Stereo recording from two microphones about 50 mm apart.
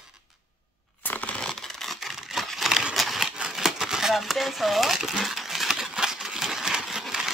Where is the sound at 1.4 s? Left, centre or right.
Centre.